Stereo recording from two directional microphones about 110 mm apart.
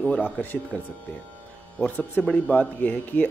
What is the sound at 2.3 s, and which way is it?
Speech, 15° left (ahead or behind).